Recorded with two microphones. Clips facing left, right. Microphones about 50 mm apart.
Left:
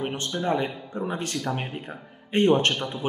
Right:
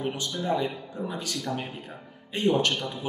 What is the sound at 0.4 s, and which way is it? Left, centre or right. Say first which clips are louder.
Speech: left 2 dB; left.